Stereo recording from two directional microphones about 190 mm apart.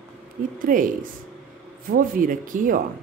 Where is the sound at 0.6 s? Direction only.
45° right (ahead or behind).